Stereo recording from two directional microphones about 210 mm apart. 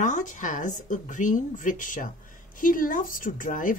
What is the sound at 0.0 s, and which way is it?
A woman's voice, 35° left (ahead or behind).